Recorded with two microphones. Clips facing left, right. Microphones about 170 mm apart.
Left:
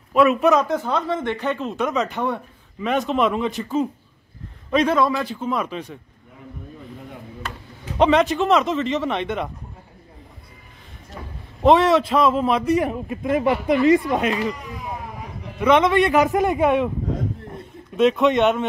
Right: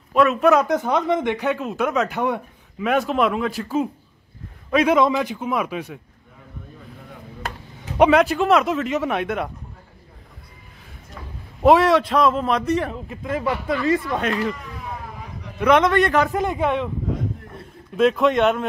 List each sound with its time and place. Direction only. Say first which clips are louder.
0.1 s a man's voice: even; 5° left (ahead or behind)
0.6 s a man's voice: right 2 dB; 15° right (ahead or behind)
4.9 s speech: right 2 dB; 15° right (ahead or behind)
8.0 s speech: right 1 dB; 10° right (ahead or behind)
11.6 s a man's voice: even; centre (ahead or behind)
12.7 s speech: left 3 dB; 15° left (ahead or behind)
14.2 s a man's voice: left 1 dB; 5° left (ahead or behind)
16.3 s a man's voice: left 3 dB; 15° left (ahead or behind)
17.9 s a man's voice: even; centre (ahead or behind)